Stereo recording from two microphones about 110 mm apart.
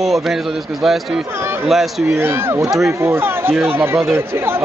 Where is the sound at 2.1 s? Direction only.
20° right (ahead or behind).